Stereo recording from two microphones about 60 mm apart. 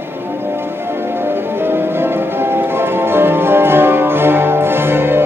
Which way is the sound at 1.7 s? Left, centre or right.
Right.